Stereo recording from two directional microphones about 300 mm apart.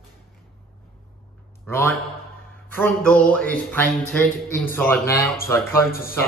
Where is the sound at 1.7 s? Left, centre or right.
Centre.